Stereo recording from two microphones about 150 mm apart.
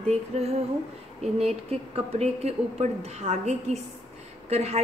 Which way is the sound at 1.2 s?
45° right (ahead or behind).